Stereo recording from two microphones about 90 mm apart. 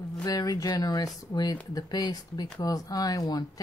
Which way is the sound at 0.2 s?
45° left (ahead or behind).